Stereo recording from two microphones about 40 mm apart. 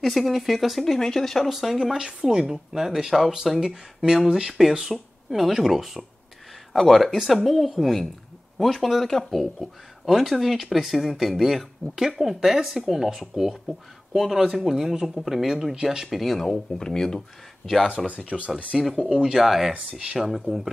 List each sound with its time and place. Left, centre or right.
0.0 s speech: centre
2.0 s a woman's voice: centre
8.5 s a woman's voice: centre
15.5 s a woman's voice: centre
16.1 s speech: centre
16.4 s speech: centre
18.0 s speech: right
19.3 s a woman's voice: centre